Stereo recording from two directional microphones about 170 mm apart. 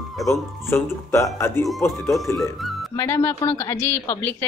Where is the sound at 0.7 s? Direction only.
15° left (ahead or behind).